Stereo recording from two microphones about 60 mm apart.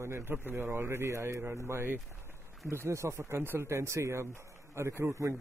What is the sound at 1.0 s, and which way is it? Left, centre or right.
Speech, right.